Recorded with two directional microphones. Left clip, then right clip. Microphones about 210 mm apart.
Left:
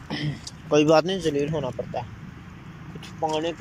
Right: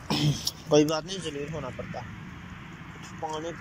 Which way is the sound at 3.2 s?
15° left (ahead or behind).